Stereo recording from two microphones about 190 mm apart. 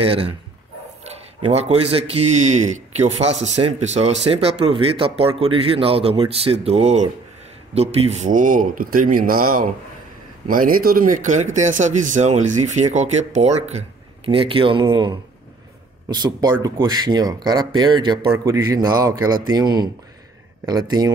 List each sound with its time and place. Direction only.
0.0 s speech: 30° right (ahead or behind)